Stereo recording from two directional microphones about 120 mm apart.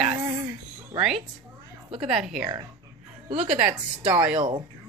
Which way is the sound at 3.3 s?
60° right (ahead or behind).